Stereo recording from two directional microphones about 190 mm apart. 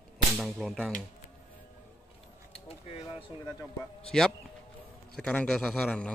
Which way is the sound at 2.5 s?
30° left (ahead or behind).